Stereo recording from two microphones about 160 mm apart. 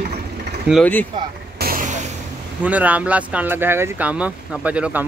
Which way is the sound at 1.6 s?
60° right (ahead or behind).